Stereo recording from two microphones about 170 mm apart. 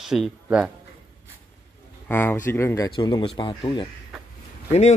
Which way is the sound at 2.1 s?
10° left (ahead or behind).